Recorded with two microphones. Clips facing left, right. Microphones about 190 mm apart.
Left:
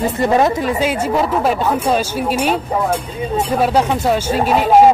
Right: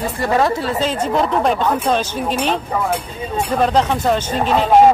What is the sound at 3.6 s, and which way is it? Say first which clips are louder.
Speech: even; 10° left (ahead or behind).